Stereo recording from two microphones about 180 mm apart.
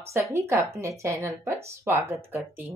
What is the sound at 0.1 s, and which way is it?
Speech, 15° right (ahead or behind).